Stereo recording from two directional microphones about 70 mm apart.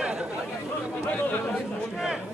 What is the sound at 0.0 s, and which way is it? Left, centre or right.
Chatter, centre.